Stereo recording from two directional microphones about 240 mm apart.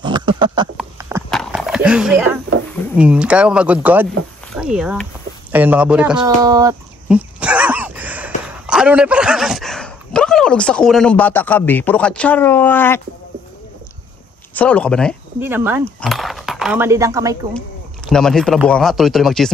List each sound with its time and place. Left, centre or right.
0.0 s a sound: centre
1.3 s skateboard: centre
3.0 s speech: centre
6.2 s a sound: centre
8.6 s speech: centre
14.5 s speech: centre
15.4 s speech: centre
17.6 s speech: centre